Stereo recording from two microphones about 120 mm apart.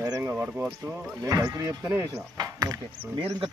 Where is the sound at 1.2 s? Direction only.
30° right (ahead or behind).